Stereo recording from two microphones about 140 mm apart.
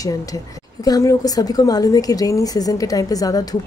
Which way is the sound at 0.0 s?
25° left (ahead or behind).